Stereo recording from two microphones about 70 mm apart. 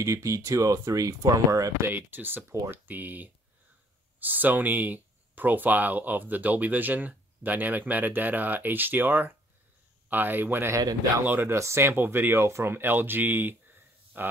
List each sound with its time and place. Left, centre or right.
0.0 s speech: right
1.9 s speech: right